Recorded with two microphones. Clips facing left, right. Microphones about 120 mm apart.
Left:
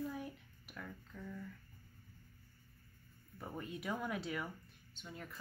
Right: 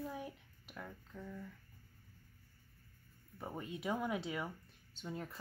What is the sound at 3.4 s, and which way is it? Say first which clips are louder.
Speech: right 2 dB; 20° right (ahead or behind).